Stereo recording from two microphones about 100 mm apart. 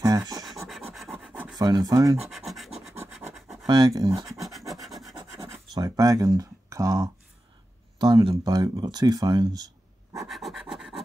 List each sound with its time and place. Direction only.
0.0 s scratch: 40° right (ahead or behind)
0.7 s rub: centre (ahead or behind)
1.6 s speech: 45° right (ahead or behind)
2.2 s scratch: centre (ahead or behind)
3.6 s speech: 45° right (ahead or behind)
4.4 s filing: centre (ahead or behind)
4.8 s rub: centre (ahead or behind)
5.8 s speech: 40° right (ahead or behind)
8.0 s speech: 55° right (ahead or behind)
10.2 s scratch: centre (ahead or behind)